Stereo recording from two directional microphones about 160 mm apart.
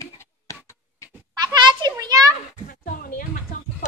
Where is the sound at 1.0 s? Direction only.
20° left (ahead or behind).